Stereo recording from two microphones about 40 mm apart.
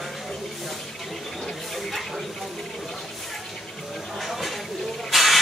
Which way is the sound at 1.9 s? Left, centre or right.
Centre.